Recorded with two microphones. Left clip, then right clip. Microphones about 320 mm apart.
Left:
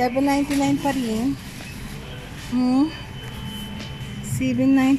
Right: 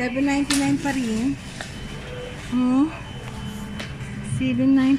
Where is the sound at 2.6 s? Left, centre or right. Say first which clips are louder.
Even; centre.